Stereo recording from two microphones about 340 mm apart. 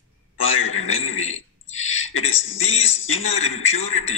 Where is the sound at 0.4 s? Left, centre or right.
Left.